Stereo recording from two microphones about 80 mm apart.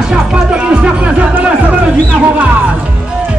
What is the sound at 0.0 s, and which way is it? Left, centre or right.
Music, centre.